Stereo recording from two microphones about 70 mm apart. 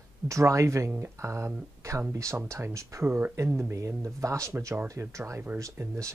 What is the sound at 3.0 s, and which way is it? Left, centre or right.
Speech, right.